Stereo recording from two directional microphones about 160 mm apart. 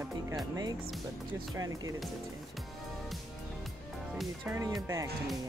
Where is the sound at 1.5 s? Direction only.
20° right (ahead or behind).